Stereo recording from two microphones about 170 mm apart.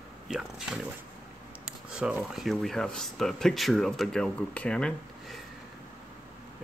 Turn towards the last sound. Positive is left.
turn(degrees=5)  # may be behind; listen again after turning